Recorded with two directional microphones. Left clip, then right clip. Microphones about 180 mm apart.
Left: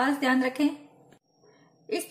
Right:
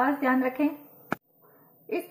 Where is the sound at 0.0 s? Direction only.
10° left (ahead or behind).